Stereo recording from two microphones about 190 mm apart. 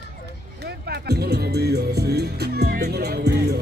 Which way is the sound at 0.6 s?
60° right (ahead or behind).